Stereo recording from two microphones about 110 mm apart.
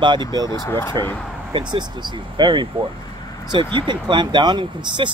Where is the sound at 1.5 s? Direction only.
40° right (ahead or behind).